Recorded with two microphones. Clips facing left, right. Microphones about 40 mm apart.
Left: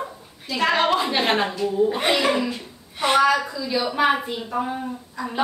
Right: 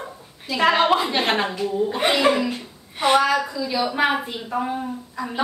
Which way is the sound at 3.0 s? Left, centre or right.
Centre.